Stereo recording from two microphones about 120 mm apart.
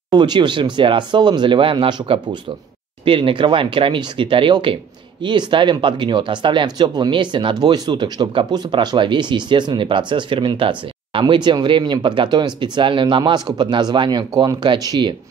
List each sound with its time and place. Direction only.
0.1 s speech: 40° right (ahead or behind)